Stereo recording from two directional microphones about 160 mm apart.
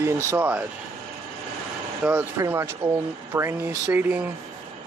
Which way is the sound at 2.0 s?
5° right (ahead or behind).